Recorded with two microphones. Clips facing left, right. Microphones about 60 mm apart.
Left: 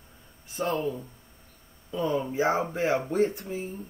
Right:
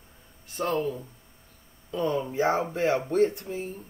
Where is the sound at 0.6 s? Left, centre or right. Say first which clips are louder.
Right 1 dB; centre.